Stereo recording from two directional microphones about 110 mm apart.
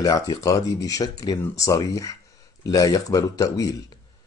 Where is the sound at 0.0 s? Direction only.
35° left (ahead or behind).